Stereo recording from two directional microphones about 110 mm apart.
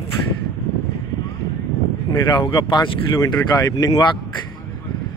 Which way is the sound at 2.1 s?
40° left (ahead or behind).